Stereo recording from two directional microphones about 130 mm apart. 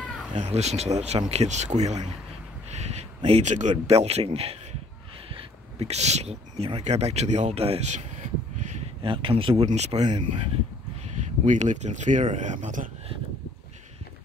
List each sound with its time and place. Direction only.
0.3 s speech: 60° right (ahead or behind)
2.7 s a sound: 60° right (ahead or behind)
3.3 s speech: 60° right (ahead or behind)
3.8 s speech: 55° right (ahead or behind)
9.0 s speech: 40° right (ahead or behind)
9.7 s speech: 60° right (ahead or behind)
11.4 s speech: 65° right (ahead or behind)